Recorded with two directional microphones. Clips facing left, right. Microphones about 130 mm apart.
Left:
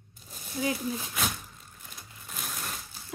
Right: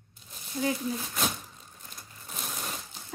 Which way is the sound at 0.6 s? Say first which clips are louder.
Right 1 dB; 5° left (ahead or behind).